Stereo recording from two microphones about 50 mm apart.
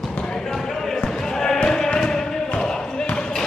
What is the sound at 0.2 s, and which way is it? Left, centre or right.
Basketball bounce, centre.